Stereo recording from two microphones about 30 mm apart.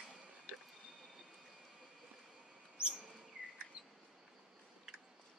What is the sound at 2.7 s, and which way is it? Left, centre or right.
Chirp, right.